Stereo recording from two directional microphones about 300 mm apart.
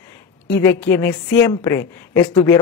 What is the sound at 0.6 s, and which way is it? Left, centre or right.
A man's voice, centre.